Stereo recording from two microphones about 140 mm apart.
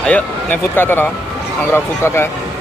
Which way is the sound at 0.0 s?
10° left (ahead or behind).